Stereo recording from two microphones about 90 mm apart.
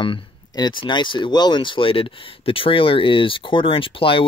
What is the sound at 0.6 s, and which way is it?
Speech, 60° left (ahead or behind).